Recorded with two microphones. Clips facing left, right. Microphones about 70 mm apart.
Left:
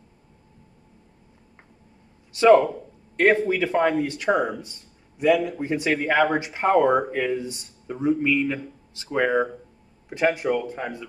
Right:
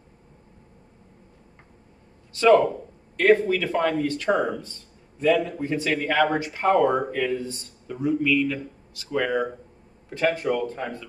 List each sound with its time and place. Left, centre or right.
2.3 s speech: centre